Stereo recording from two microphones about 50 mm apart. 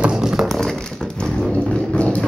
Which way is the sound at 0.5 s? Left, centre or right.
Centre.